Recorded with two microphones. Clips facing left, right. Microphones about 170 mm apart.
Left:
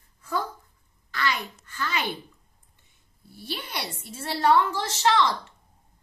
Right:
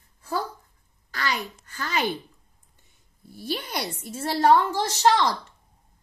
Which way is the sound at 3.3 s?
45° right (ahead or behind).